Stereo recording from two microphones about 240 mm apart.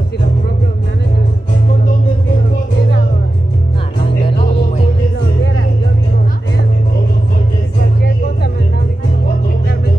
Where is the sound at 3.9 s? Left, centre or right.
Left.